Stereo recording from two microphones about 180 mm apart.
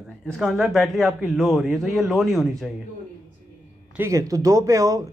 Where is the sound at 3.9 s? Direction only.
15° right (ahead or behind).